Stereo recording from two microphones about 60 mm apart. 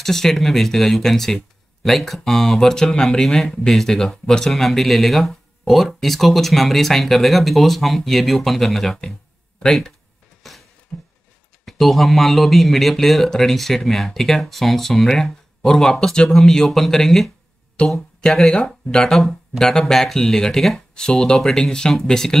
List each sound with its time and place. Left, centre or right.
0.0 s speech: centre
10.4 s a sound: centre
10.9 s a sound: left
11.6 s speech: centre
17.8 s speech: centre
19.1 s speech: centre